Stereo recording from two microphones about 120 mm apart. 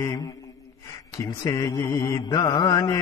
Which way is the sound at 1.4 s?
30° left (ahead or behind).